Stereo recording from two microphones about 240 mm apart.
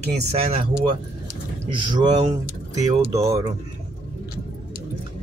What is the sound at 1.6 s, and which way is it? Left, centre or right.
Speech, centre.